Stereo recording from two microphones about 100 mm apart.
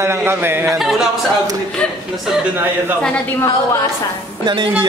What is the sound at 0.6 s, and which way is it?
Speech, 5° right (ahead or behind).